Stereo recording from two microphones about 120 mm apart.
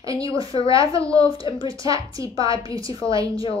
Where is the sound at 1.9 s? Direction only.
30° right (ahead or behind).